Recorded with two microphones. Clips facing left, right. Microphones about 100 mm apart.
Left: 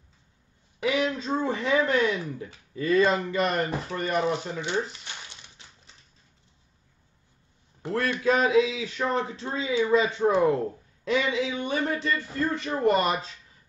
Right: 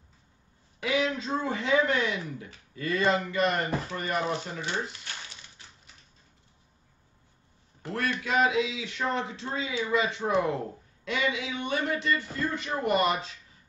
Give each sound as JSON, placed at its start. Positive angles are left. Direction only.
{"t": 0.8, "sound": "a woman's voice", "side_deg": 25}
{"t": 7.9, "sound": "speech", "side_deg": 35}